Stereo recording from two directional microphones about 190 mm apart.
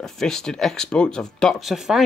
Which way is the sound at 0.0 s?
Centre (ahead or behind).